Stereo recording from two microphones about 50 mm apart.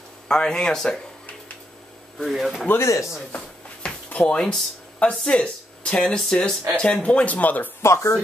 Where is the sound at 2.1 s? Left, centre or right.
Centre.